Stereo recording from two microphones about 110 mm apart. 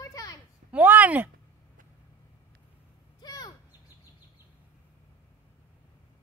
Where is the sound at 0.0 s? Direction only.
30° left (ahead or behind).